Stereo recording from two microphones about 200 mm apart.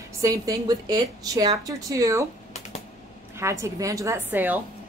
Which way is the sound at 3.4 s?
15° right (ahead or behind).